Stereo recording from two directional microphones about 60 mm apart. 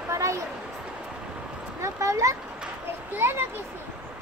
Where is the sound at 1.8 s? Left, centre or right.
Right.